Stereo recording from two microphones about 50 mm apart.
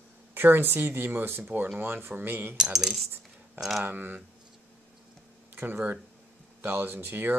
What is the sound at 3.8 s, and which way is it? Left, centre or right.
Speech, right.